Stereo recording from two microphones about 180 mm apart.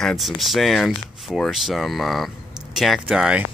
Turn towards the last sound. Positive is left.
turn(degrees=-5)  # may be behind; listen again after turning